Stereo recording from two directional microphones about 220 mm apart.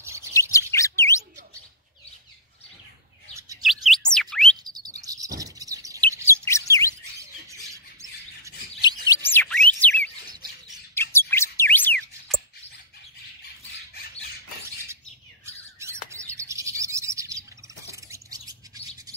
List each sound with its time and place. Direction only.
0.0 s chirp: 15° right (ahead or behind)
0.3 s chirp: 15° left (ahead or behind)
3.6 s bird: centre (ahead or behind)
4.6 s chirp: 20° right (ahead or behind)
6.4 s chirp: 15° left (ahead or behind)
9.1 s bird: 10° left (ahead or behind)
11.1 s chirp: 10° left (ahead or behind)
15.4 s bird: 10° right (ahead or behind)
17.8 s a sound: 15° right (ahead or behind)